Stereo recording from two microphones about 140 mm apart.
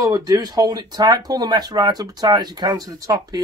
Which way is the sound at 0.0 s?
25° right (ahead or behind).